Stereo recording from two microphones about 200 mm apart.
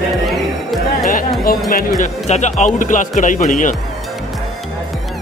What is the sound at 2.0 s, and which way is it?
Speech, 35° left (ahead or behind).